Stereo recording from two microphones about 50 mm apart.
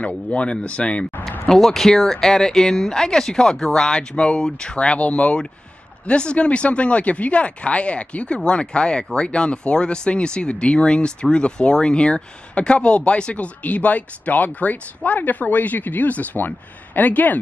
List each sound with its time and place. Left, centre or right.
0.0 s speech: left
1.5 s speech: centre; by 17.4 s left